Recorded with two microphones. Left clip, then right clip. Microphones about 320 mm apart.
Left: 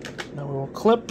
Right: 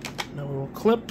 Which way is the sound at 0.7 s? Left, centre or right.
Centre.